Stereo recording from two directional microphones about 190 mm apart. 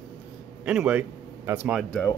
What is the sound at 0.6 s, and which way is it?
A man's voice, 5° right (ahead or behind).